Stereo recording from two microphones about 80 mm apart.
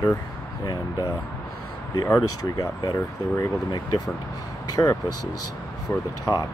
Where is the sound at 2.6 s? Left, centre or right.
Left.